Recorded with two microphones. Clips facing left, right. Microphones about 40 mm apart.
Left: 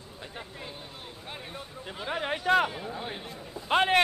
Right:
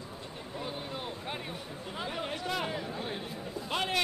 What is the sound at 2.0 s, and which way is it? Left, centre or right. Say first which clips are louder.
Speech: left 7 dB; left.